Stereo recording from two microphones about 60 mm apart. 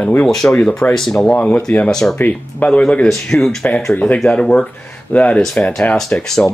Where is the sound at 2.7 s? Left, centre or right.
Centre.